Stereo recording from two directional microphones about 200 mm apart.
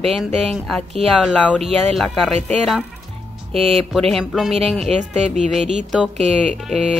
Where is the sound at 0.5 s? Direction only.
Centre (ahead or behind).